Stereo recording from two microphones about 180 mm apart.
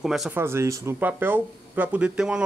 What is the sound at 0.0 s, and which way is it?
Speech, centre (ahead or behind).